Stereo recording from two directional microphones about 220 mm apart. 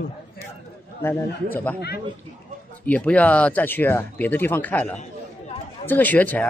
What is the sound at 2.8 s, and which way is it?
A man's voice, 5° left (ahead or behind).